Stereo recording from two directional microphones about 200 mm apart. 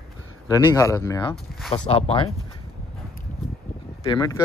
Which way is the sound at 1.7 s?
30° left (ahead or behind).